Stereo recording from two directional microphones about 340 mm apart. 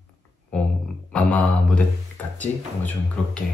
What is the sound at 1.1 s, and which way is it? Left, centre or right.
Speech, centre.